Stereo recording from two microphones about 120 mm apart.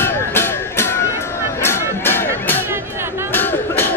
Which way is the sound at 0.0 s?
20° left (ahead or behind).